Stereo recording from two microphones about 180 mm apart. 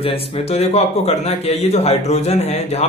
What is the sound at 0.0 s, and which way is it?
A man's voice, 30° left (ahead or behind).